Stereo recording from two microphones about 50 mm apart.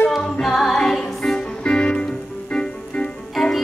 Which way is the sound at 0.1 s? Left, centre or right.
Centre.